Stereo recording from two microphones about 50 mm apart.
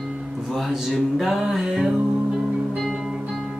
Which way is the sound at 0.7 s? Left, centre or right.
Centre.